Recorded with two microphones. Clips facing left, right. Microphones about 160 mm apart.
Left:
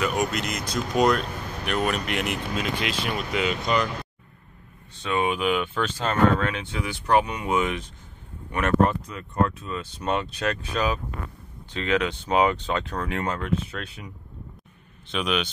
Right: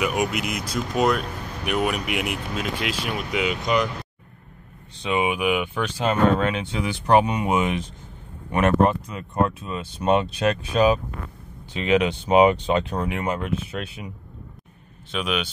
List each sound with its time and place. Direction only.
0.0 s speech: 10° right (ahead or behind)
5.0 s speech: 15° right (ahead or behind)